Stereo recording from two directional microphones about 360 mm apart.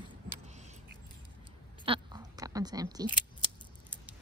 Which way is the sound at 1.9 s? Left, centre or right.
Centre.